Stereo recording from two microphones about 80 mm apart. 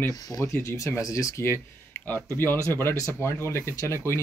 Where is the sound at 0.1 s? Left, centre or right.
Left.